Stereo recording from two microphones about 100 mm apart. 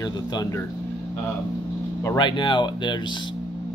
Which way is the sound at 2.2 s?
50° left (ahead or behind).